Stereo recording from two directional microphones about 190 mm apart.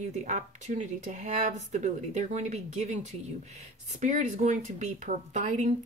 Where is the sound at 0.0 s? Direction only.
40° right (ahead or behind).